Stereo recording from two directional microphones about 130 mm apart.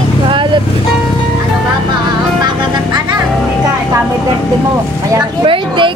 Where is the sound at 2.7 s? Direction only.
35° right (ahead or behind).